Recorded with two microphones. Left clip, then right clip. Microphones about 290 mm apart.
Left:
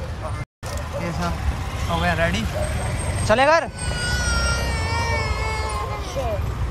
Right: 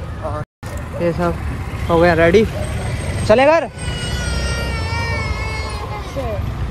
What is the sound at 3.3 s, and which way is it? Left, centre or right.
Music, centre.